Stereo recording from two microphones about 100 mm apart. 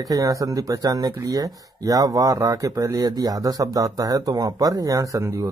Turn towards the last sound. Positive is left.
turn(degrees=-30)  # may be behind; listen again after turning